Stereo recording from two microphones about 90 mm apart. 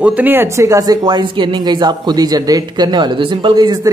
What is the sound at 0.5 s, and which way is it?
A man's voice, 35° right (ahead or behind).